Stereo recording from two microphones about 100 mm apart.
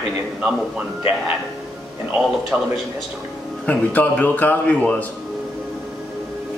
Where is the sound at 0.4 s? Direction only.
5° right (ahead or behind).